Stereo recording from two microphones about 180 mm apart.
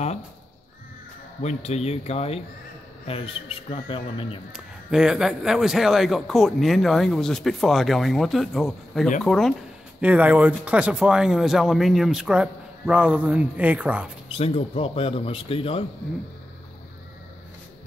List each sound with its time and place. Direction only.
1.4 s speech: 35° left (ahead or behind)
4.5 s a man's voice: 5° right (ahead or behind)
14.3 s speech: 35° left (ahead or behind)